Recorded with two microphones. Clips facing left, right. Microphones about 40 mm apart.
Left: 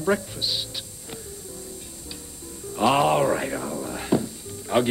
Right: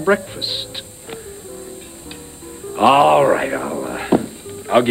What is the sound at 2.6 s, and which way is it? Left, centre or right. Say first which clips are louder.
Music: right 8 dB; right.